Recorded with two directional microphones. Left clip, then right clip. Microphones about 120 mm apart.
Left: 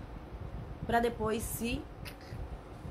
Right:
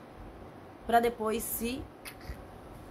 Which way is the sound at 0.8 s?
25° right (ahead or behind).